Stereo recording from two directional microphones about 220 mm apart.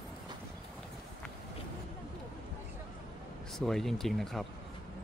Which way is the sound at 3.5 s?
Centre (ahead or behind).